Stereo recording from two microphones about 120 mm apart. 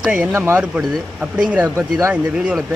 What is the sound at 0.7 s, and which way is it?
A man's voice, 5° right (ahead or behind).